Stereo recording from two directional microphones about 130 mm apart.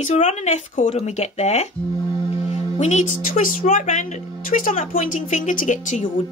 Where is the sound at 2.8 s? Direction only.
65° left (ahead or behind).